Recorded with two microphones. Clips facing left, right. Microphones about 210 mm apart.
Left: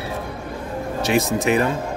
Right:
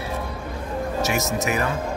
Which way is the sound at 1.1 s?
30° left (ahead or behind).